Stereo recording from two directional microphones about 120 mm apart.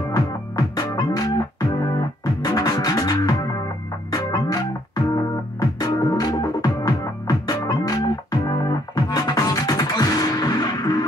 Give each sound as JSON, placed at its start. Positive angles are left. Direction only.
{"t": 0.1, "sound": "music", "side_deg": 30}